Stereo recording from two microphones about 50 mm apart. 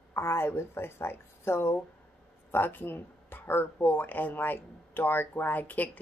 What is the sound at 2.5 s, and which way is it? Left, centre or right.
Speech, left.